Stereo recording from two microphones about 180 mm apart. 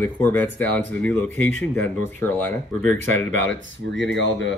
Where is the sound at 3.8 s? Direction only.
90° right.